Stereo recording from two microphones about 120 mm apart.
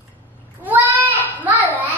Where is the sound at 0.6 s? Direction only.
15° right (ahead or behind).